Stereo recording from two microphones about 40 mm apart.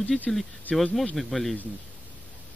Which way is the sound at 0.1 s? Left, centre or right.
Centre.